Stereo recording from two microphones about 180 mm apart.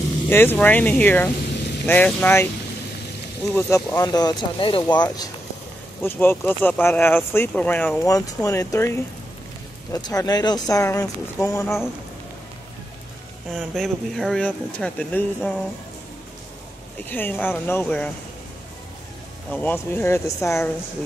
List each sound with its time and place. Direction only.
0.3 s speech: 10° left (ahead or behind)
3.5 s speech: 20° left (ahead or behind)
6.0 s speech: 10° left (ahead or behind)
10.0 s speech: 20° left (ahead or behind)
13.5 s speech: centre (ahead or behind)
17.0 s speech: 10° left (ahead or behind)
19.5 s speech: 10° left (ahead or behind)